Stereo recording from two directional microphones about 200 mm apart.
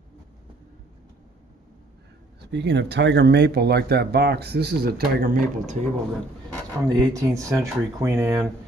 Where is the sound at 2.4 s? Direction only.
60° right (ahead or behind); by 5.8 s 40° right (ahead or behind).